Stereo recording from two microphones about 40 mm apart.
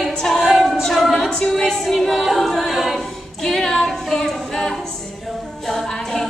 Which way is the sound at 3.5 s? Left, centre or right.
Centre.